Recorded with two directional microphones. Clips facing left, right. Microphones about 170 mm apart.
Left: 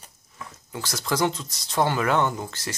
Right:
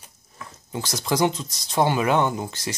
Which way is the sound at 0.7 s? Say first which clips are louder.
Right 3 dB; 20° right (ahead or behind).